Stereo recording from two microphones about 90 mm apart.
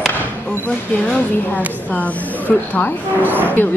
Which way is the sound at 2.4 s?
20° left (ahead or behind).